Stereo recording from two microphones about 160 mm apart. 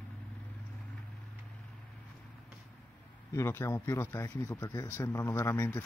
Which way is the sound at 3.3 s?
15° left (ahead or behind).